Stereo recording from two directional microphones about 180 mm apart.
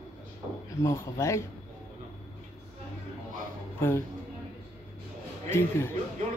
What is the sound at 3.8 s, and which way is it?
Speech, 15° left (ahead or behind).